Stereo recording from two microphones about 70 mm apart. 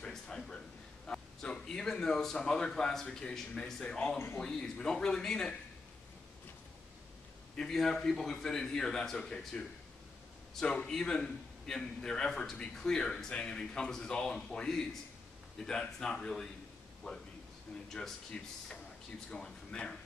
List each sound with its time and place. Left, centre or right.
0.0 s a sound: centre
1.0 s a man's voice: centre
3.8 s a man's voice: centre
7.5 s a man's voice: centre
17.8 s a man's voice: centre